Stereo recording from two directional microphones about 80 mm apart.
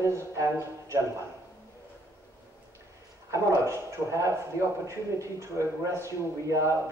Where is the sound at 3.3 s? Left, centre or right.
Right.